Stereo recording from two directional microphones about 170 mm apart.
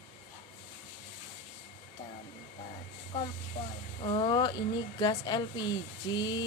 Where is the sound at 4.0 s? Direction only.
30° left (ahead or behind).